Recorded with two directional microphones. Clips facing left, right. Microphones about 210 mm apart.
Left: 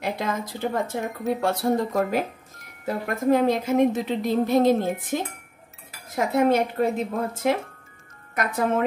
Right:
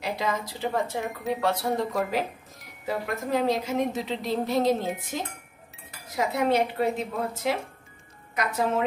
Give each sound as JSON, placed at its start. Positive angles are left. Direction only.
{"t": 0.0, "sound": "speech", "side_deg": 50}